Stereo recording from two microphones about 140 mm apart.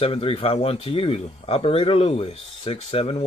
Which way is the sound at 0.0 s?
40° left (ahead or behind).